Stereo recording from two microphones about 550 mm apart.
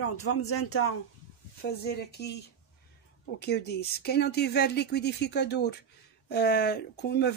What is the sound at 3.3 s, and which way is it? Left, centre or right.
Speech, centre.